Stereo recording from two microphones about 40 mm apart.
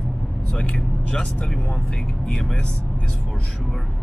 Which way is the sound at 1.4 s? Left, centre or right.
Centre.